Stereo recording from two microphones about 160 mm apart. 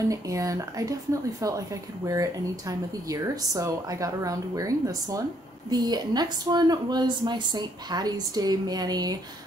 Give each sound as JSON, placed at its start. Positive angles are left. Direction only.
{"t": 0.1, "sound": "speech", "side_deg": -20}